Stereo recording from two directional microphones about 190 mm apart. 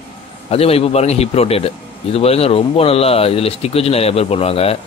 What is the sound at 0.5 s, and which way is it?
Speech, 30° left (ahead or behind).